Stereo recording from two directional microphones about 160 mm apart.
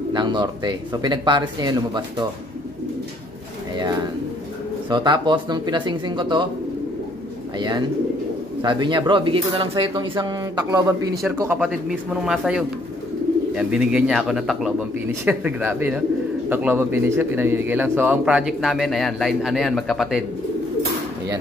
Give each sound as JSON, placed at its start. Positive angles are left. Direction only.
{"t": 0.1, "sound": "speech", "side_deg": -25}
{"t": 4.8, "sound": "speech", "side_deg": -30}
{"t": 7.5, "sound": "speech", "side_deg": -25}
{"t": 11.6, "sound": "a man's voice", "side_deg": -5}